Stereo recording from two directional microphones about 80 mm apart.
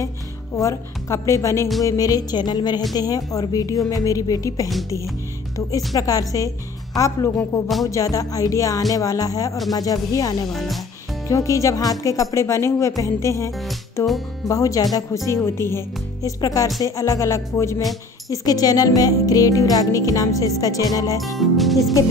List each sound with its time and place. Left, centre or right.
0.6 s speech: left
1.8 s music: left
5.9 s music: left
10.5 s speech: centre
11.2 s music: left
14.0 s music: centre
14.5 s music: left
15.2 s speech: left
16.3 s music: left
16.8 s speech: left
18.3 s music: left
21.4 s speech: centre